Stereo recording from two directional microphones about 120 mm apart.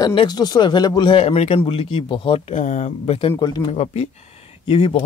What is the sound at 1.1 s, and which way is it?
Speech, 55° left (ahead or behind).